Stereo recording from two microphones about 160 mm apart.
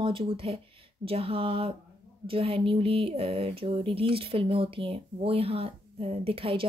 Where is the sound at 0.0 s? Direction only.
35° right (ahead or behind).